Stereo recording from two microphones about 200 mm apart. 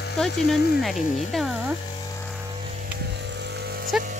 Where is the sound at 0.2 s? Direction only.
Centre (ahead or behind).